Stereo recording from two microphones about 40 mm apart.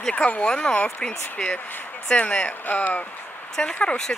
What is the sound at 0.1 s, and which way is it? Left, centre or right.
Speech, left.